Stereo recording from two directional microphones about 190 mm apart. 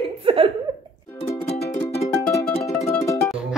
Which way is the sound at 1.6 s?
35° left (ahead or behind).